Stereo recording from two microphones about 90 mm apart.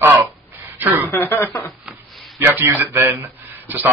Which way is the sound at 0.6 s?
20° right (ahead or behind).